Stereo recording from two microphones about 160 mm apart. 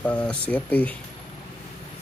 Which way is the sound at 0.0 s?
5° left (ahead or behind).